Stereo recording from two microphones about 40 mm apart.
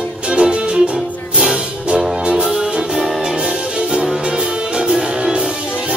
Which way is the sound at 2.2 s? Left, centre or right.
Centre.